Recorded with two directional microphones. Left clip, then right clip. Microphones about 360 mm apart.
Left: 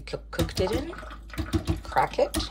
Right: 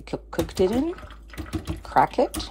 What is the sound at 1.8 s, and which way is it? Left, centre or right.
Speech, centre.